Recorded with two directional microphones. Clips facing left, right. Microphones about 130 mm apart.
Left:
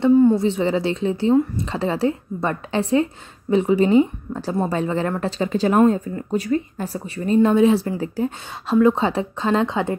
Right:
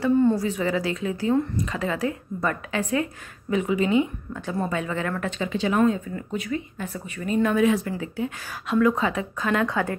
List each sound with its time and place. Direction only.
0.2 s a woman's voice: 20° left (ahead or behind)